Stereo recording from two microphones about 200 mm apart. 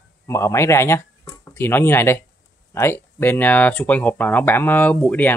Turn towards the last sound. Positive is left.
turn(degrees=10)  # may be behind; listen again after turning